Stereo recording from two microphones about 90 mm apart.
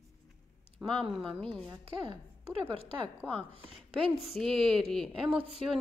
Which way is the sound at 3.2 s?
10° left (ahead or behind).